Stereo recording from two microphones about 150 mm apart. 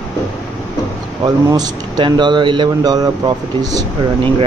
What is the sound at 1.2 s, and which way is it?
Speech, 25° right (ahead or behind).